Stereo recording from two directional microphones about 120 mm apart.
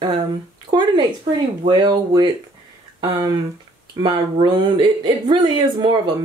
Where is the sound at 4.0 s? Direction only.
45° right (ahead or behind).